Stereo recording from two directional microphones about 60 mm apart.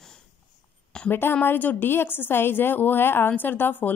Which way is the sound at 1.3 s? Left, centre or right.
Left.